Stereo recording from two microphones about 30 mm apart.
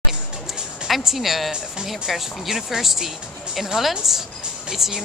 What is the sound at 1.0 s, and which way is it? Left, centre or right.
Speech, centre.